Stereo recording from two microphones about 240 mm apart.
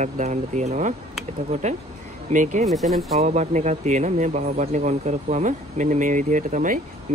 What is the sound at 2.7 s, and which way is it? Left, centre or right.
Speech, centre.